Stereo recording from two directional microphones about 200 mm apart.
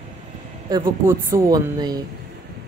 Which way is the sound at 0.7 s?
20° right (ahead or behind).